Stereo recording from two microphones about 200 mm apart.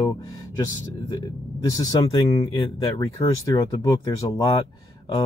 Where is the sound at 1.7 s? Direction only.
20° left (ahead or behind).